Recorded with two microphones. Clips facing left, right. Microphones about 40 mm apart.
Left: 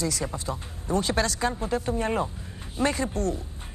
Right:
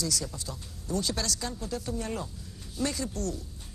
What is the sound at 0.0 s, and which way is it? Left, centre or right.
Speech, left.